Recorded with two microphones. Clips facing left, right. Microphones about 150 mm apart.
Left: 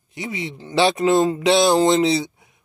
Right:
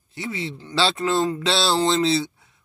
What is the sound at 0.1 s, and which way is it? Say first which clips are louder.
Speech: left 1 dB; 15° left (ahead or behind).